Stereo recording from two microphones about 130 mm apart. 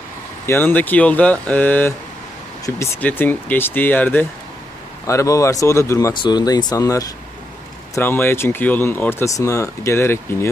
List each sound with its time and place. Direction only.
0.5 s speech: 15° left (ahead or behind)
3.0 s speech: 15° left (ahead or behind)
7.9 s speech: 15° left (ahead or behind)